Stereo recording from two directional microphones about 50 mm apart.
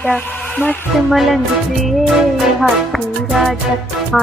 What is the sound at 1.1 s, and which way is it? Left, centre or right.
Music, centre.